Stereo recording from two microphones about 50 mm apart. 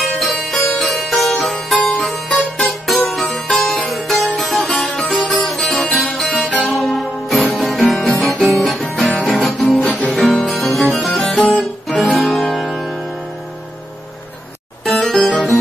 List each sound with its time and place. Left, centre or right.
0.2 s music: centre
8.2 s guitar: centre
9.2 s music: centre
9.8 s music: left
10.3 s music: centre
14.9 s music: centre